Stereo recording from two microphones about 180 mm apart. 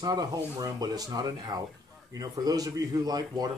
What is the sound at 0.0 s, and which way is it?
A man's voice, 20° right (ahead or behind).